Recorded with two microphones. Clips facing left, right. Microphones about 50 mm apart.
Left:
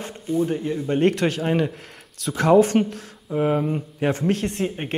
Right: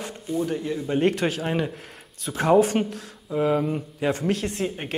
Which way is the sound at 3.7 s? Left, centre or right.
Left.